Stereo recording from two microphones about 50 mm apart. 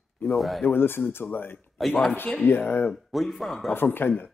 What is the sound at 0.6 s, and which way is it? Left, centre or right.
Speech, left.